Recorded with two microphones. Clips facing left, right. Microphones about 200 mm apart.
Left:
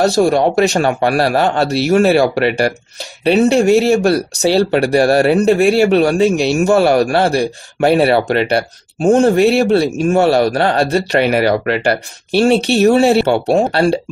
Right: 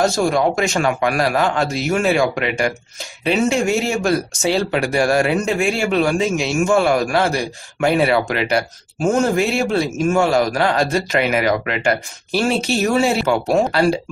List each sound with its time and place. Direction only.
0.0 s speech: 35° left (ahead or behind)